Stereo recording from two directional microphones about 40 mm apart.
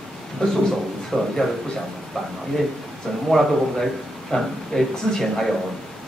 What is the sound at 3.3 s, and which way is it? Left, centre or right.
A man's voice, centre.